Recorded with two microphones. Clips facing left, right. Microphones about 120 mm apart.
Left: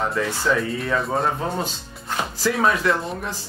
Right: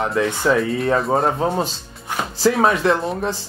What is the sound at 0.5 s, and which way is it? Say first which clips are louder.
Speech: right 5 dB; 35° right (ahead or behind).